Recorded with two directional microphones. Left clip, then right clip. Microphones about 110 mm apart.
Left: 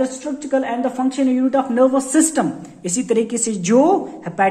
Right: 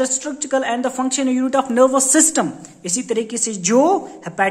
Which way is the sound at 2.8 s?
10° right (ahead or behind).